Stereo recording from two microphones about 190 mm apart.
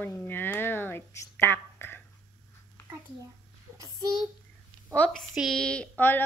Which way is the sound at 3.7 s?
15° right (ahead or behind).